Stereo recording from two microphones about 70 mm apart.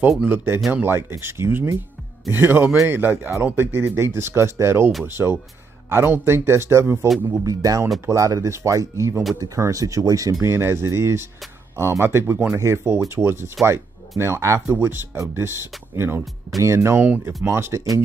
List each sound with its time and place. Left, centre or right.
0.2 s speech: right
7.4 s speech: right
10.4 s speech: right
17.0 s speech: right
17.4 s speech: right